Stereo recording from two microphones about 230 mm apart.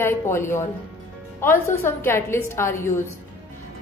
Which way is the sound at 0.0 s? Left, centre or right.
Centre.